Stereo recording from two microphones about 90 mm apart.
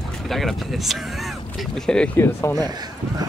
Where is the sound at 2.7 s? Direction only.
50° right (ahead or behind).